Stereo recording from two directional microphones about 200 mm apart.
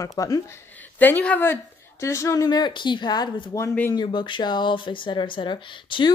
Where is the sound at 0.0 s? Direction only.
15° left (ahead or behind).